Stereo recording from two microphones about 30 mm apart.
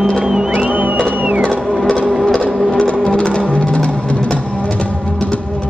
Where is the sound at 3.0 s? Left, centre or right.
Left.